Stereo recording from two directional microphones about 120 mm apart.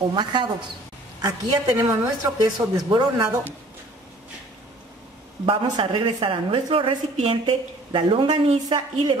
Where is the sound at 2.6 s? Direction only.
25° right (ahead or behind).